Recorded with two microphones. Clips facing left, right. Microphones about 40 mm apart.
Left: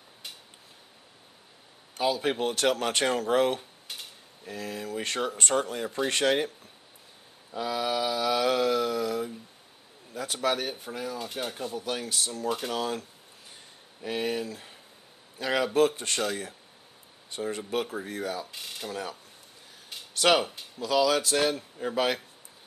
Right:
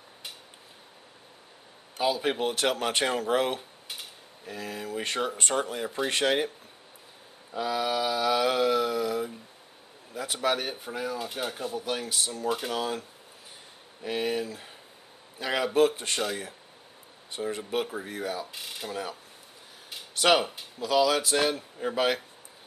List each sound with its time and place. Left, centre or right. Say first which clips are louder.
2.0 s speech: even; centre
7.5 s speech: right 1 dB; centre
14.0 s speech: right 1 dB; centre